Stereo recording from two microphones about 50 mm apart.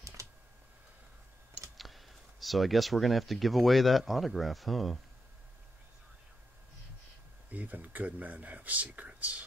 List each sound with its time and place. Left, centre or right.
0.0 s computer keyboard: right
1.8 s speech: centre
7.4 s speech: right